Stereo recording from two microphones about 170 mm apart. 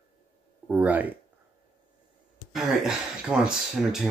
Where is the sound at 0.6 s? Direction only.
10° right (ahead or behind).